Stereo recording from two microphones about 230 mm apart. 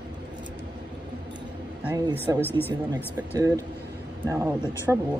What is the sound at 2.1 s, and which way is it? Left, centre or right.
Speech, centre.